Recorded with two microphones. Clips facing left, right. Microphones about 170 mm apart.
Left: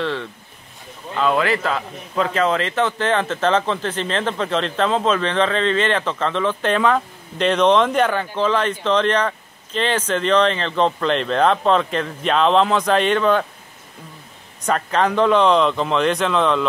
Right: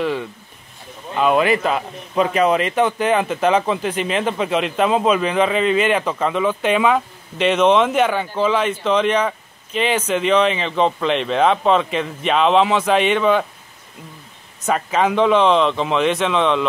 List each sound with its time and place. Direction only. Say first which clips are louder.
0.0 s a man's voice: right 2 dB; 10° right (ahead or behind)
14.7 s speech: right 1 dB; 5° right (ahead or behind)